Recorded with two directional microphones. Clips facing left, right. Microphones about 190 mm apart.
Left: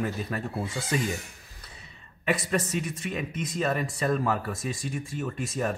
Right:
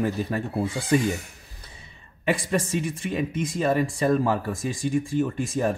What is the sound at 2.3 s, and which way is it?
Speech, 30° right (ahead or behind).